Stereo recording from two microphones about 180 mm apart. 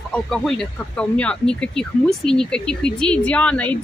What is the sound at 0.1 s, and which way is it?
Speech, centre (ahead or behind).